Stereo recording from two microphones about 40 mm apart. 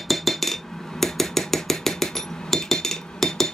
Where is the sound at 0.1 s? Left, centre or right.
Centre.